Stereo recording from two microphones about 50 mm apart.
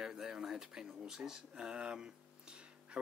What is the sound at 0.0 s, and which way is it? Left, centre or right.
Speech, centre.